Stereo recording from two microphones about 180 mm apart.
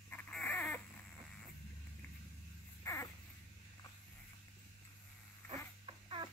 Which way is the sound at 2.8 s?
15° left (ahead or behind).